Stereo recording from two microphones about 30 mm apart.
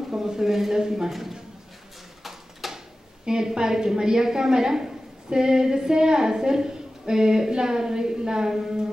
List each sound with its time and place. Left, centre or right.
0.1 s a woman's voice: centre
1.1 s speech: centre
2.6 s a sound: centre
3.3 s a woman's voice: right